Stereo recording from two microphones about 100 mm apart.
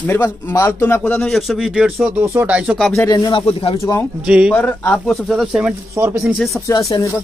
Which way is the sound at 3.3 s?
65° left (ahead or behind).